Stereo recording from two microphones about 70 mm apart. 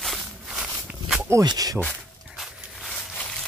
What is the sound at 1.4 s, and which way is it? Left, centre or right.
Speech, right.